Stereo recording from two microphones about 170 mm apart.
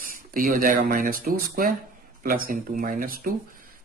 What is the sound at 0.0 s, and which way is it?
A man's voice, 55° right (ahead or behind).